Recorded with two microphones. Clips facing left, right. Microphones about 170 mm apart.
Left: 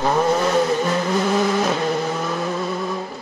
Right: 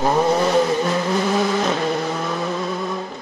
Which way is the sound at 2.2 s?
Centre (ahead or behind).